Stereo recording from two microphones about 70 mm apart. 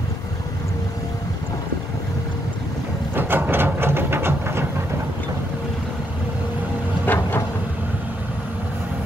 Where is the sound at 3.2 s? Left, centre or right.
Right.